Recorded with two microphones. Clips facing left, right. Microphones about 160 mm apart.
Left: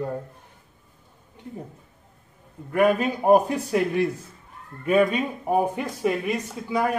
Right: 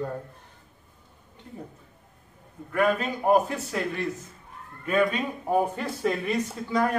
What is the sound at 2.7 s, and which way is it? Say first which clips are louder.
A man's voice: left 4 dB; 15° left (ahead or behind).